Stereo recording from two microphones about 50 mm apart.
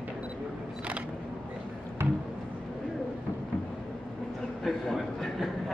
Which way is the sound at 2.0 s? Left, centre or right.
Right.